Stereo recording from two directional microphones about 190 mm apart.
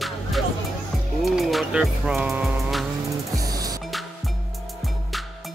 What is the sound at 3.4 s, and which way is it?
Music, 20° right (ahead or behind).